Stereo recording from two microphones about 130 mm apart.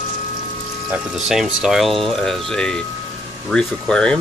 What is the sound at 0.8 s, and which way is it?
Speech, 5° right (ahead or behind).